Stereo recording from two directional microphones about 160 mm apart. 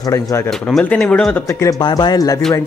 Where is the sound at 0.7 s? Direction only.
5° left (ahead or behind).